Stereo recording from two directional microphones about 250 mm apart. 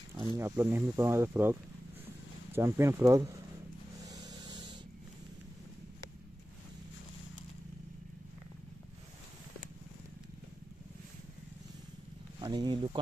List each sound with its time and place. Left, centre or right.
0.4 s speech: centre
4.2 s spray: centre
12.4 s speech: centre